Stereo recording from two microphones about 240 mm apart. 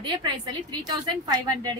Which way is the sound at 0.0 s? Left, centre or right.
Centre.